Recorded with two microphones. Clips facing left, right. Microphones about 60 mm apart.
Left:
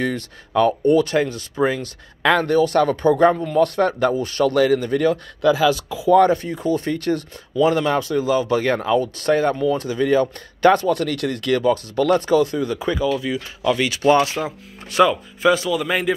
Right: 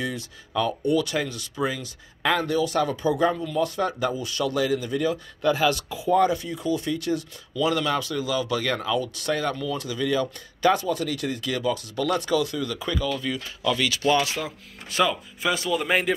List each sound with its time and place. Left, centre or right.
0.0 s speech: left
0.9 s speech: left
6.2 s speech: left
7.5 s speech: left
12.3 s speech: left; by 13.4 s centre
13.6 s speech: left
15.7 s a man's voice: centre